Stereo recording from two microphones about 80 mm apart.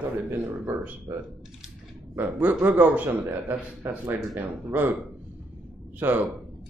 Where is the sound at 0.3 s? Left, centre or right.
Right.